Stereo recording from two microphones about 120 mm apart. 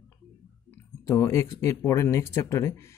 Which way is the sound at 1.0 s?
25° left (ahead or behind).